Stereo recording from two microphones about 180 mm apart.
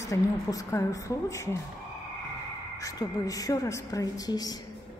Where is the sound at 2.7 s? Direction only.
20° left (ahead or behind).